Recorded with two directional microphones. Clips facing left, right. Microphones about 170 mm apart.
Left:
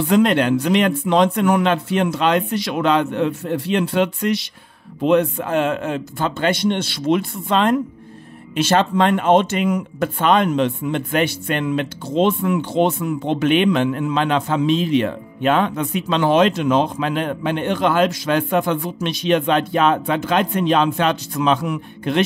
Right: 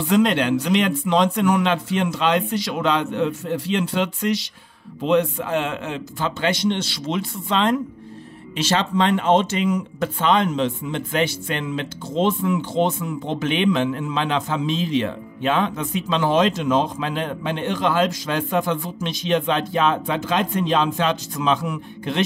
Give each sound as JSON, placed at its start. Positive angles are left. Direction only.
{"t": 0.0, "sound": "a man's voice", "side_deg": 55}